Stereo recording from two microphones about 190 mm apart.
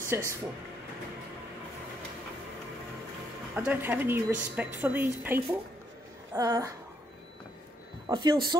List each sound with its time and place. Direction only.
0.0 s speech: 15° right (ahead or behind)
3.5 s a woman's voice: 10° right (ahead or behind)
8.1 s speech: 25° right (ahead or behind)